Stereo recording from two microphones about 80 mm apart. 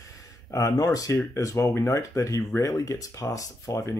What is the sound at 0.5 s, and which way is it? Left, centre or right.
Speech, left.